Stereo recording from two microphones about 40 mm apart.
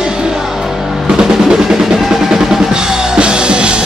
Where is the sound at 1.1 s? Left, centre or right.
Centre.